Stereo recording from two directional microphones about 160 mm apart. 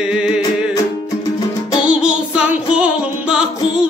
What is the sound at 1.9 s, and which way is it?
Music, 5° right (ahead or behind).